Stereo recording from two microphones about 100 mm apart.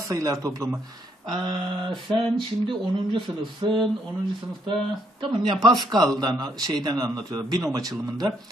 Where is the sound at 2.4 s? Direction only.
55° right (ahead or behind).